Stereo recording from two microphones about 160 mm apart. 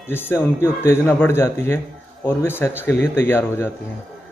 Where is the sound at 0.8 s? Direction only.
15° left (ahead or behind).